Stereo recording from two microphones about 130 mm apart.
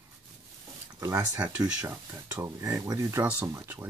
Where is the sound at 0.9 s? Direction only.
25° right (ahead or behind).